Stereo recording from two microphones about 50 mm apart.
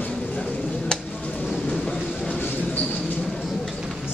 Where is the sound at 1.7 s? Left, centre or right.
Centre.